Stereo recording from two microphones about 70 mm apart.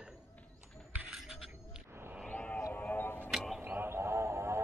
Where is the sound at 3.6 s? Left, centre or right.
Right.